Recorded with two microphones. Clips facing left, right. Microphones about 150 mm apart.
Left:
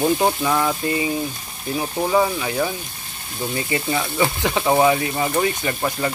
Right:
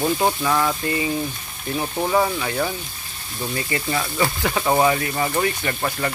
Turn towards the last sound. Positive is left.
turn(degrees=15)  # may be behind; listen again after turning